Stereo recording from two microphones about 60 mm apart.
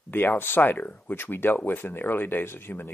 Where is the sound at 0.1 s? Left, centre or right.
Left.